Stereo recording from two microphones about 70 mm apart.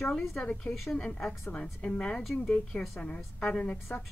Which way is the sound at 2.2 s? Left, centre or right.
Centre.